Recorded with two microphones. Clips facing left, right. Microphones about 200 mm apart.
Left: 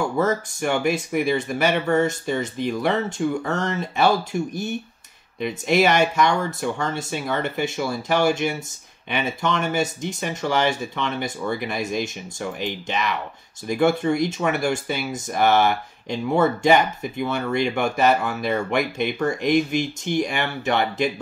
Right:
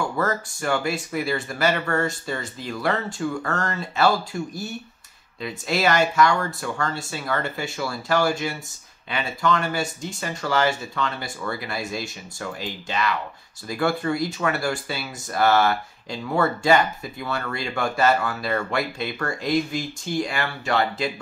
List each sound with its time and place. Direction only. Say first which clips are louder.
0.2 s speech: left 3 dB; 20° left (ahead or behind)